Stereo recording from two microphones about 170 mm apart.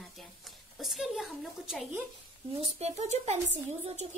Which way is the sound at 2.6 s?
40° right (ahead or behind).